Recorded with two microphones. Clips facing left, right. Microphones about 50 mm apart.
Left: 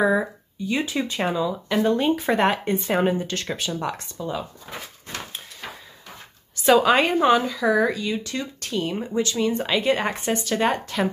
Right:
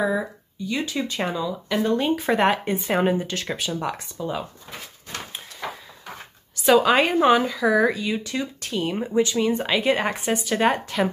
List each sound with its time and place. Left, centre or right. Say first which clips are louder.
0.0 s speech: left 3 dB; centre
6.6 s speech: even; centre